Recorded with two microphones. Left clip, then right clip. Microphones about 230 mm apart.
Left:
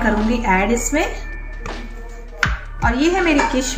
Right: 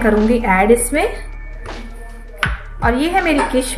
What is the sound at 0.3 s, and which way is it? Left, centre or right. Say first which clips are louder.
Speech: right 6 dB; right.